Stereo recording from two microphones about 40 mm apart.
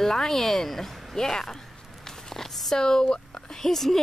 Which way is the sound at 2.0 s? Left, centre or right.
Centre.